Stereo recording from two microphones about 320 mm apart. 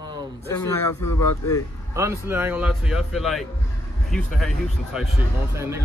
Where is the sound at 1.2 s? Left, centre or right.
Centre.